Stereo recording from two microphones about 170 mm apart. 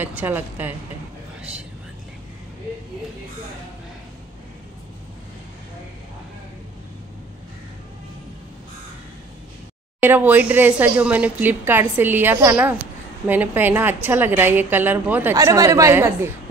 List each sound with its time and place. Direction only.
0.0 s speech: 10° right (ahead or behind)
9.9 s speech: 10° right (ahead or behind)